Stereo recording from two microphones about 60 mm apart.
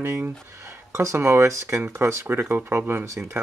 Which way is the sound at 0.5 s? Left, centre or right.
Right.